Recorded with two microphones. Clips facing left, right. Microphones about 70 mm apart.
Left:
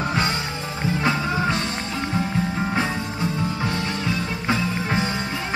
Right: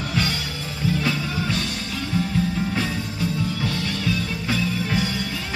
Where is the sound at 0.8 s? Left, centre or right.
Left.